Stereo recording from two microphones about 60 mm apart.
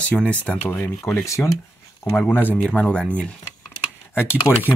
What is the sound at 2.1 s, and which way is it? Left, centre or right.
Speech, left.